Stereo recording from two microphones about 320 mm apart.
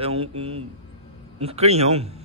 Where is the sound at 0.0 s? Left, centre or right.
Centre.